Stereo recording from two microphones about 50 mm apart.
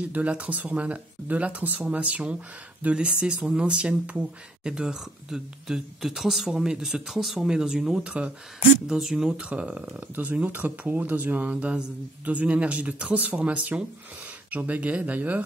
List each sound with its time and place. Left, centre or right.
0.1 s speech: right
4.8 s speech: centre
8.8 s speech: centre
9.4 s speech: right
9.9 s speech: right